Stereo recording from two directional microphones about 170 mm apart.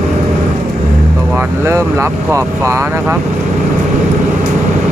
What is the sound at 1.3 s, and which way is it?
Vehicle, 15° right (ahead or behind).